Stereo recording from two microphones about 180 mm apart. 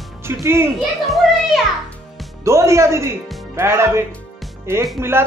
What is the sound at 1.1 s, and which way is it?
Children playing, centre (ahead or behind).